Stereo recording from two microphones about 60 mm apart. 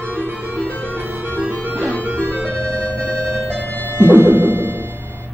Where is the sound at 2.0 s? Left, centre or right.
Right.